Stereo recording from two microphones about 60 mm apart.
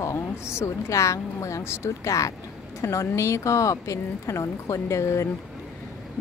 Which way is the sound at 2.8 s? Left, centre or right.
Left.